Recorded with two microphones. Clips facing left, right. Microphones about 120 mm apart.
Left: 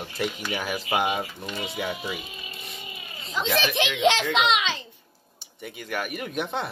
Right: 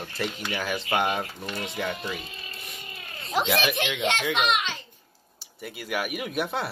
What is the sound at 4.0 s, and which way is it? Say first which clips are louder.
Speech: left 6 dB; 90° left.